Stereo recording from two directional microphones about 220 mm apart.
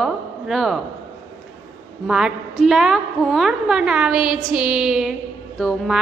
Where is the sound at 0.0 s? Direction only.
Centre (ahead or behind).